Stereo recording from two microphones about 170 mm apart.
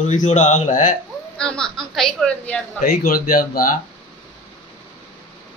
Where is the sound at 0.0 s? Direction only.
45° left (ahead or behind).